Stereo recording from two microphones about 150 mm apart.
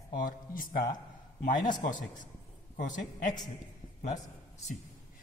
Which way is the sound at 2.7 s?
55° left (ahead or behind).